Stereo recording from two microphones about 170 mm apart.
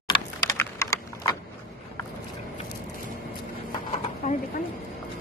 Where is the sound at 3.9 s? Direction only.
45° left (ahead or behind).